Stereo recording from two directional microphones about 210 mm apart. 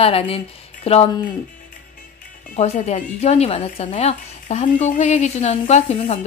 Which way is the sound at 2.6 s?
35° left (ahead or behind).